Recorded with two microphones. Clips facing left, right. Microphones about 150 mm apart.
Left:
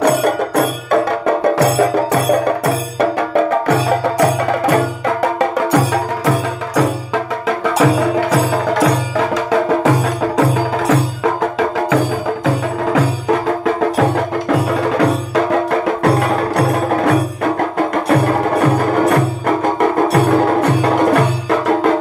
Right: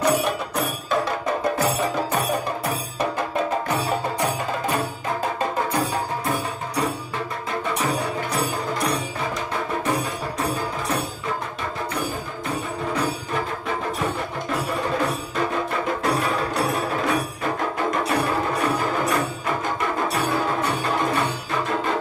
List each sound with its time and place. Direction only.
0.0 s music: 65° left (ahead or behind); by 11.3 s 90° left
12.4 s music: 85° left